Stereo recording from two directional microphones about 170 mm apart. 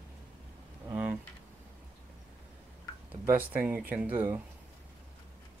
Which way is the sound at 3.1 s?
10° right (ahead or behind).